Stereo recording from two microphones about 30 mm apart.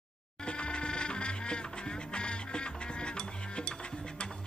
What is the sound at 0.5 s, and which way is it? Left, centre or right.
Music, left.